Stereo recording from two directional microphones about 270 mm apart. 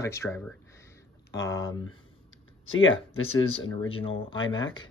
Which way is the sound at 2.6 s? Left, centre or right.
Left.